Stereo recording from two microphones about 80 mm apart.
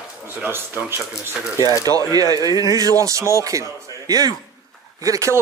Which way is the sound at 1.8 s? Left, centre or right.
Right.